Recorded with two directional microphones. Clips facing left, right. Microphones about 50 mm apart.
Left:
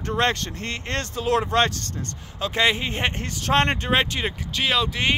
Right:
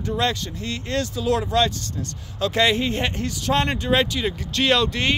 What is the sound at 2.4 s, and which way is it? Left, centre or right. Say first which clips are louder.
Speech: right 2 dB; left.